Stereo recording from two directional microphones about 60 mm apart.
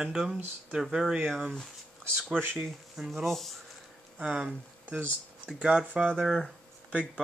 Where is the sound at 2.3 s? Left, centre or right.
Right.